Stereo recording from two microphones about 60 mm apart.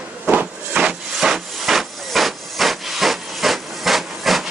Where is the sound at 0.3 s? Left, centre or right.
Right.